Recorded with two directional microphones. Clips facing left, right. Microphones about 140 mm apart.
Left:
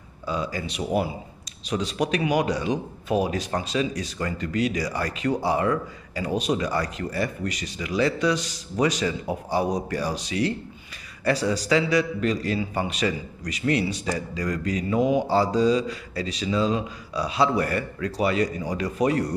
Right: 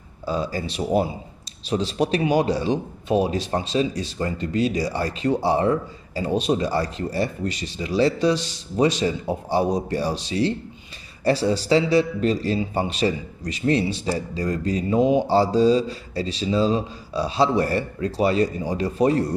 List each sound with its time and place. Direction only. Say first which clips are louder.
0.2 s speech: right 3 dB; 35° right (ahead or behind)